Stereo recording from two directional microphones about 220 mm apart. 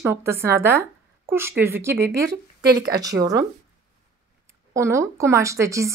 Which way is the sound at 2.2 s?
45° right (ahead or behind).